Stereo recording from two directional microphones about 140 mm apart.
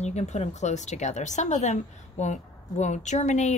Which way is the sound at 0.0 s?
55° left (ahead or behind).